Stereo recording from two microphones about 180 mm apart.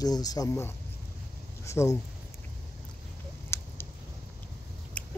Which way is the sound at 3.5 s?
15° left (ahead or behind).